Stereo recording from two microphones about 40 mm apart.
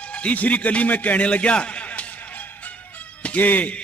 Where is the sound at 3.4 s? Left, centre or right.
Left.